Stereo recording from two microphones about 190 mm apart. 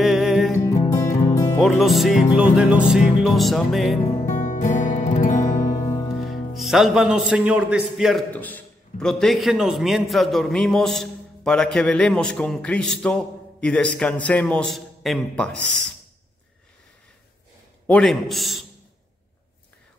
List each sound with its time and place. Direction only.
0.0 s music: centre (ahead or behind)
1.0 s music: 15° left (ahead or behind)
1.6 s a man's voice: centre (ahead or behind)
4.3 s music: 40° left (ahead or behind)
6.5 s a man's voice: centre (ahead or behind)
17.8 s a man's voice: 5° left (ahead or behind)